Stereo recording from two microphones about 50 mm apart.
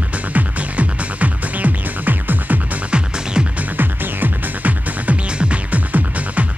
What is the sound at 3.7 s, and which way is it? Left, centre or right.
Music, right.